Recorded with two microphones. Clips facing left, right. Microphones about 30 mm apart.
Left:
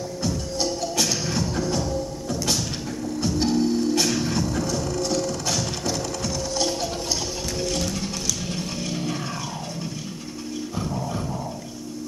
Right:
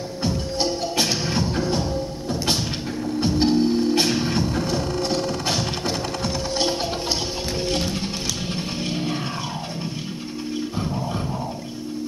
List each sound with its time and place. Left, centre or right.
0.2 s music: right
7.6 s sewing machine: right
8.8 s music: right